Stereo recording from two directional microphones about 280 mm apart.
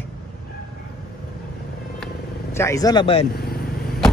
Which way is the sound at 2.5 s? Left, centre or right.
Centre.